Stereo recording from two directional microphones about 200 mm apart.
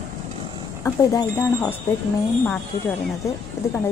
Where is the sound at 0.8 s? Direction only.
15° left (ahead or behind).